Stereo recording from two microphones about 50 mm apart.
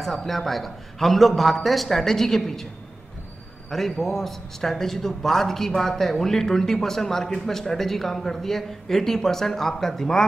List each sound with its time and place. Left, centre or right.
0.0 s a man's voice: centre
3.7 s a man's voice: centre